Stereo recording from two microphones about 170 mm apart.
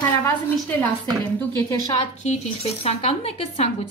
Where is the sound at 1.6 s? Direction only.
20° left (ahead or behind).